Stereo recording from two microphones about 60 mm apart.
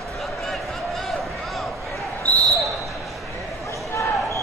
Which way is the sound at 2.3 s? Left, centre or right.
Left.